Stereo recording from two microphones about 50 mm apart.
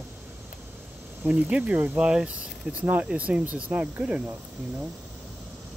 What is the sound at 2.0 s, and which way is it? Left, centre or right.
Speech, centre.